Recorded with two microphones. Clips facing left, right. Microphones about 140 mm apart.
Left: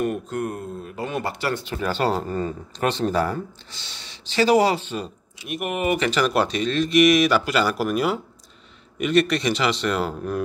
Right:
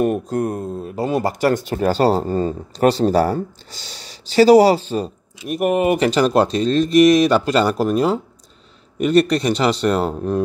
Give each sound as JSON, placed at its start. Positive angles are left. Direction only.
{"t": 0.0, "sound": "speech", "side_deg": -35}